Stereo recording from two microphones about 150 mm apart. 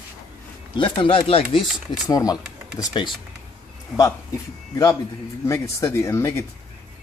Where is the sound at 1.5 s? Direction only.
Centre (ahead or behind).